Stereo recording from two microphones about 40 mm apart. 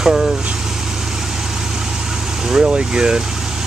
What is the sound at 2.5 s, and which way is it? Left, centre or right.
Speech, right.